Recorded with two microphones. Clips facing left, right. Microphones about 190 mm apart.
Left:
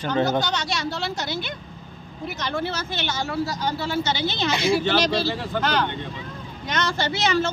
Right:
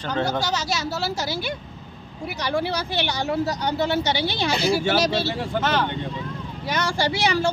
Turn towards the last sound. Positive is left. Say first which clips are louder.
# right 1 dB
turn(degrees=-10)  # may be behind; listen again after turning